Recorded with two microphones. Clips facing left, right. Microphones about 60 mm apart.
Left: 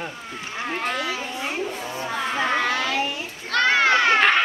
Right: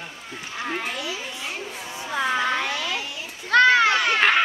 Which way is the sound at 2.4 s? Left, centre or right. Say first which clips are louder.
Left 2 dB; left.